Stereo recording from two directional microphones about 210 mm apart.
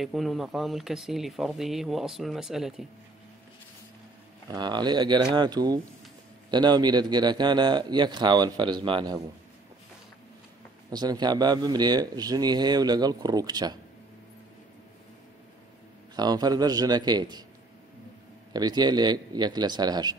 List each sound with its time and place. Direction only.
0.0 s speech: centre (ahead or behind)
4.5 s speech: 20° right (ahead or behind)
10.9 s speech: 20° right (ahead or behind)
16.2 s speech: 20° right (ahead or behind)
18.5 s speech: 20° right (ahead or behind)